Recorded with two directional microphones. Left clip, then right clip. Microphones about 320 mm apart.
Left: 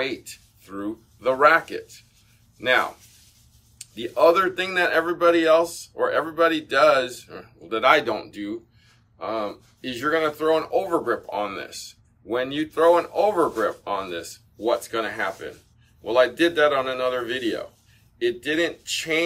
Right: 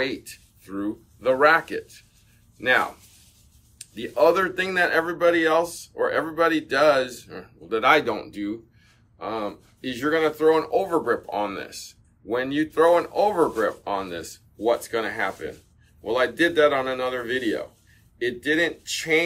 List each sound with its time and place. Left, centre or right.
0.0 s speech: centre